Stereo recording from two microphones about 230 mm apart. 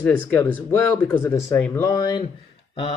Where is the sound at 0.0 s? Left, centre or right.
Centre.